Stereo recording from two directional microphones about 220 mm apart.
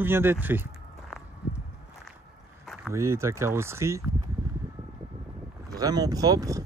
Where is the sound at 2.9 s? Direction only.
10° right (ahead or behind).